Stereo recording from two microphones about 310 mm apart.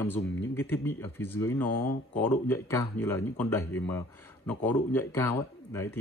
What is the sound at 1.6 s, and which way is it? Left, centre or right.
Speech, left.